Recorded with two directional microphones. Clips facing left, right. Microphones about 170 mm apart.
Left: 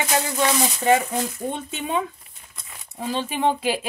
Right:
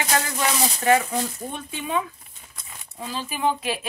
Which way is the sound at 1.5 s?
25° left (ahead or behind).